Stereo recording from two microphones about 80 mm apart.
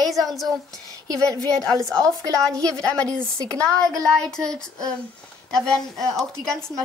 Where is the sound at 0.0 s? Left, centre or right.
Centre.